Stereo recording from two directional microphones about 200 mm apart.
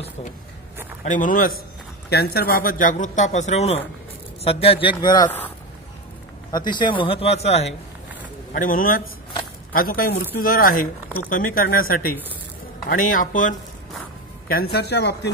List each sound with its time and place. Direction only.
1.0 s a man's voice: 40° left (ahead or behind); by 5.3 s 20° left (ahead or behind)
6.5 s speech: 20° left (ahead or behind)
8.5 s a man's voice: 45° left (ahead or behind)
14.5 s speech: 50° left (ahead or behind)